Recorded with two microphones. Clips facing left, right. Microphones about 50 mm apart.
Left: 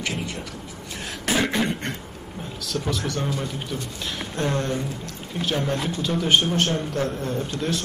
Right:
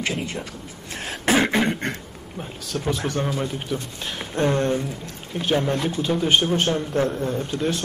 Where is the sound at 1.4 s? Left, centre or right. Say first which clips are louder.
Right 2 dB; right.